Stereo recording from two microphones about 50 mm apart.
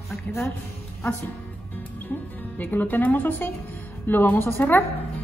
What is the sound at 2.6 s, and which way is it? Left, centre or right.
A woman's voice, left.